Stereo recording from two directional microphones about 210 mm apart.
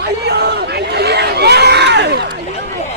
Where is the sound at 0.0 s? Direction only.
50° right (ahead or behind).